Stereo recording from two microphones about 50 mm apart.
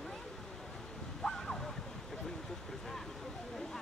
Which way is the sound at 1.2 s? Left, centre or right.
Centre.